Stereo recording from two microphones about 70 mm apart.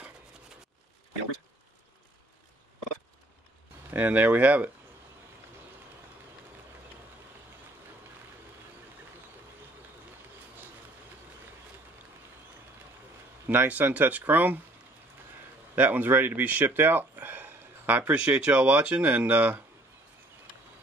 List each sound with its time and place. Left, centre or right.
3.9 s speech: right
13.5 s speech: right
15.7 s speech: right